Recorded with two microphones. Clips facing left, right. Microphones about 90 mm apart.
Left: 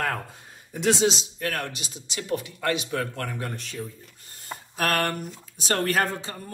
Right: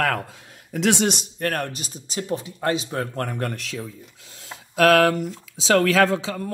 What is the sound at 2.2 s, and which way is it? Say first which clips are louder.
Speech: right 2 dB; 30° right (ahead or behind).